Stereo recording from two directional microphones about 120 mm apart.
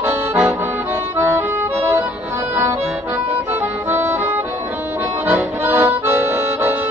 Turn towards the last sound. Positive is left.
turn(degrees=-20)  # may be behind; listen again after turning